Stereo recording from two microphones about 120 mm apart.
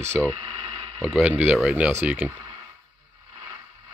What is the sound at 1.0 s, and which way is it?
Speech, 10° right (ahead or behind).